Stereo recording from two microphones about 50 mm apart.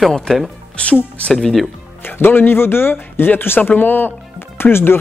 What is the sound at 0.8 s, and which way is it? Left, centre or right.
Speech, left.